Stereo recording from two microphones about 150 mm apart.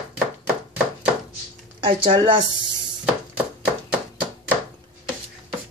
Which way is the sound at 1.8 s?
35° right (ahead or behind).